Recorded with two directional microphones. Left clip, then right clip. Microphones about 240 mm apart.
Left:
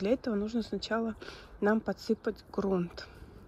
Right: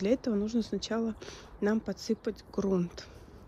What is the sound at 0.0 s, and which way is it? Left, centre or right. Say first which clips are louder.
Speech: right 1 dB; centre.